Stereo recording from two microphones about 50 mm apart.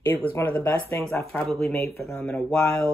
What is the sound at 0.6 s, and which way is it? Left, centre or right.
Speech, left.